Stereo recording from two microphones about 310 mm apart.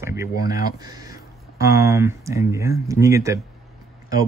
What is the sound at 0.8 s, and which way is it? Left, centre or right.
Speech, centre.